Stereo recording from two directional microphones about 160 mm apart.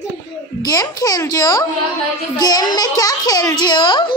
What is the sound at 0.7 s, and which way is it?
A child's voice, 20° left (ahead or behind).